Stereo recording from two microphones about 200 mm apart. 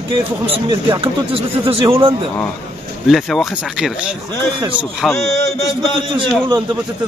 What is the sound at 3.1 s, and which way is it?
Speech, centre (ahead or behind).